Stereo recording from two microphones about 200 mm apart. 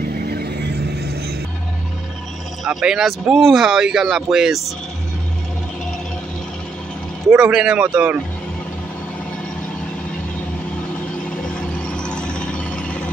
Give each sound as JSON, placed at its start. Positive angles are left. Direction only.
{"t": 0.2, "sound": "vehicle", "side_deg": -50}
{"t": 2.6, "sound": "speech", "side_deg": -5}
{"t": 7.2, "sound": "speech", "side_deg": -10}
{"t": 11.4, "sound": "a sound", "side_deg": 5}